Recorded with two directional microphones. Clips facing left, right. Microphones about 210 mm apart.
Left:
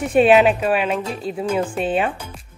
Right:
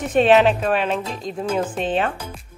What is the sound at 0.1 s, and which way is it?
Speech, 10° left (ahead or behind).